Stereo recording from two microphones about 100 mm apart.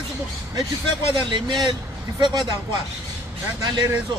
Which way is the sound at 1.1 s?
50° right (ahead or behind).